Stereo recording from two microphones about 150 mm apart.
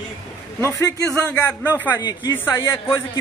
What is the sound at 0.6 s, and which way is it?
Speech, 20° left (ahead or behind).